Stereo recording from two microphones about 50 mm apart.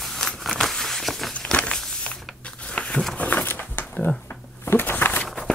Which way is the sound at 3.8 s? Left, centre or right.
Left.